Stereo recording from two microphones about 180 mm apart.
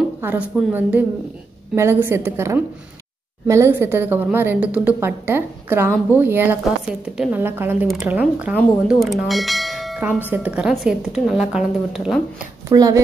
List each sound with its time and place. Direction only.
0.2 s a woman's voice: 10° right (ahead or behind)
12.6 s speech: 20° right (ahead or behind)